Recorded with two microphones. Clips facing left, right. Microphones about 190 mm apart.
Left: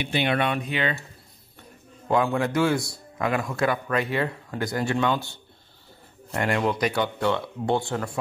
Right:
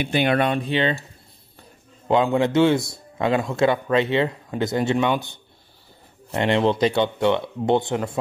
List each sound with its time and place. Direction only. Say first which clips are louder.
0.0 s speech: right 4 dB; 50° right (ahead or behind)
0.5 s speech: right 5 dB; 30° right (ahead or behind)
2.0 s speech: right 4 dB; 20° right (ahead or behind)